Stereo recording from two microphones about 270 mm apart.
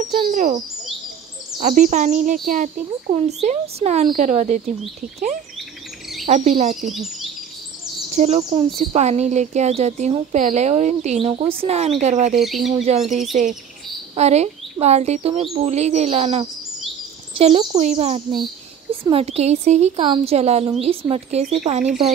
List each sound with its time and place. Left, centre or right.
0.2 s a child's voice: right
1.6 s speech: right
6.2 s speech: right
6.9 s speech: centre
8.2 s speech: right
12.4 s speech: centre
12.7 s a woman's voice: right